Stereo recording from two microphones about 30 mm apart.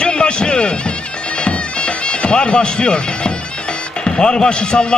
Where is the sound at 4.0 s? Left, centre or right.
Left.